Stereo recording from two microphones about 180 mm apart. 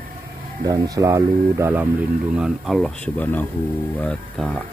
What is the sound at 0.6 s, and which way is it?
Speech, 20° right (ahead or behind).